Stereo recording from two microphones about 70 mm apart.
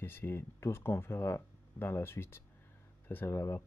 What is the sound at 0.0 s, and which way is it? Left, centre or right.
Speech, left.